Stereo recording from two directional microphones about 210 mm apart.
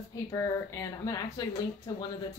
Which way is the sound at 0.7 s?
15° left (ahead or behind).